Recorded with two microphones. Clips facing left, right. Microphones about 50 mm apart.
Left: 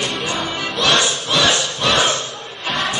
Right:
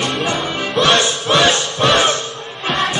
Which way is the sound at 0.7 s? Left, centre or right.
Right.